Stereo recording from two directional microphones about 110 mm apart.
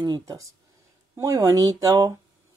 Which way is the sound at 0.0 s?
35° right (ahead or behind).